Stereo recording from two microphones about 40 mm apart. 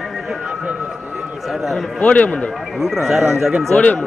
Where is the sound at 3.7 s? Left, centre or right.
Left.